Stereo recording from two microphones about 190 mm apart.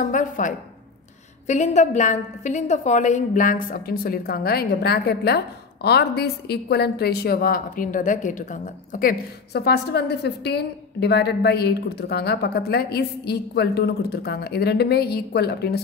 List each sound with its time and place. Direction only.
0.0 s a woman's voice: 40° left (ahead or behind); by 15.8 s 60° left (ahead or behind)